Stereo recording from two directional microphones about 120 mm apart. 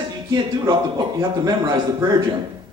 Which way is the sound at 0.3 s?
35° right (ahead or behind).